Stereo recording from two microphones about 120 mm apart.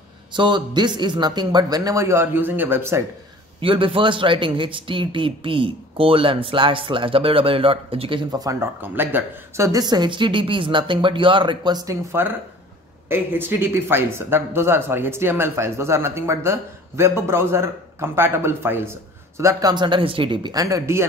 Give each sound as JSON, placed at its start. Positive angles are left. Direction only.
{"t": 0.3, "sound": "speech", "side_deg": -40}
{"t": 3.6, "sound": "a man's voice", "side_deg": -45}
{"t": 8.3, "sound": "speech", "side_deg": -30}
{"t": 8.8, "sound": "speech", "side_deg": -15}
{"t": 9.7, "sound": "speech", "side_deg": -35}
{"t": 19.7, "sound": "a man's voice", "side_deg": -40}
{"t": 20.5, "sound": "speech", "side_deg": -25}